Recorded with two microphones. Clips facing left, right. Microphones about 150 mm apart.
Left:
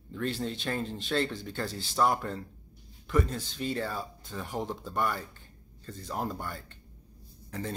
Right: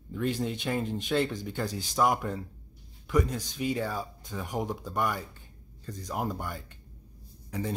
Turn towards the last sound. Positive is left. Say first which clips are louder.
# right 3 dB
turn(degrees=-10)  # may be behind; listen again after turning